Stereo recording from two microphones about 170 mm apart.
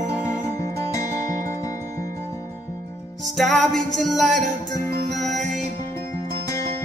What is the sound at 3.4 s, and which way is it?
Music, centre (ahead or behind).